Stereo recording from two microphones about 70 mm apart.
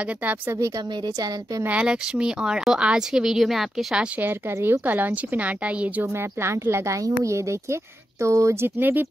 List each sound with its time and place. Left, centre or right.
1.7 s speech: centre
4.2 s speech: right
6.4 s a woman's voice: right
8.6 s speech: right